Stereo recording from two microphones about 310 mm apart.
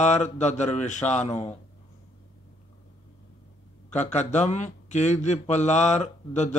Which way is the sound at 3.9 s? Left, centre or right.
Left.